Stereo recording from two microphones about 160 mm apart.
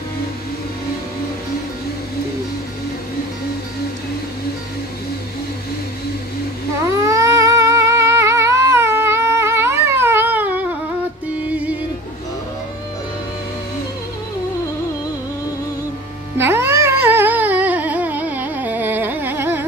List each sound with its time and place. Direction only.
6.9 s cat: 20° right (ahead or behind)
16.3 s music: 15° right (ahead or behind)